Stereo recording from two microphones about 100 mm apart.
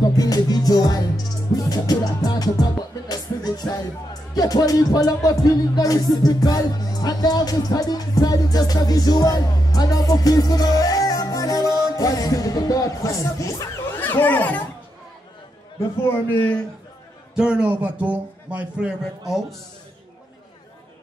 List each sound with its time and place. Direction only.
0.0 s music: 40° left (ahead or behind)
13.9 s speech: 20° left (ahead or behind)
16.3 s a man's voice: 15° left (ahead or behind)
17.4 s speech: 10° right (ahead or behind)